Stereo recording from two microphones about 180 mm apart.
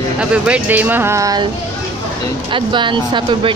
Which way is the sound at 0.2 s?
5° right (ahead or behind).